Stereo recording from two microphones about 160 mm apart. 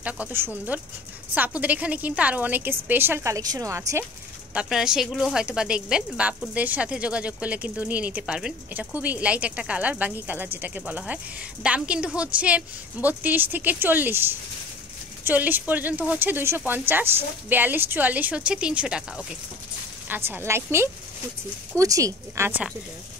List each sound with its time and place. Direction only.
0.0 s speech: 10° right (ahead or behind)
4.6 s speech: 5° right (ahead or behind); by 22.5 s 20° right (ahead or behind)